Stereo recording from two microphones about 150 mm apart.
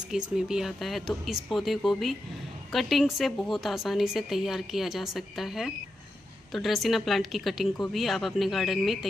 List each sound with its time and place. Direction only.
0.1 s a woman's voice: 5° right (ahead or behind)